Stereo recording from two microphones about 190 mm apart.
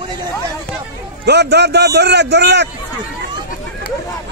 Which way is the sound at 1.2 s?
60° right (ahead or behind).